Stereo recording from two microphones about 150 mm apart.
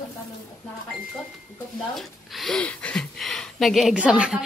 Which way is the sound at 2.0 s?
Centre (ahead or behind).